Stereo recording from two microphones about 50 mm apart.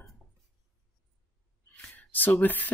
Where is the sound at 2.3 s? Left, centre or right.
Left.